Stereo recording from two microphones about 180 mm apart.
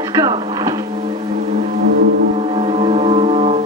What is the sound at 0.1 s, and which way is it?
Television, 20° right (ahead or behind).